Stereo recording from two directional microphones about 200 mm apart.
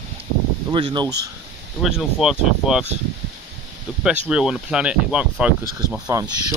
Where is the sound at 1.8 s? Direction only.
5° right (ahead or behind).